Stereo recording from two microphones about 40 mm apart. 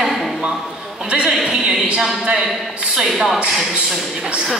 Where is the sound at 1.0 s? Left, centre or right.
Right.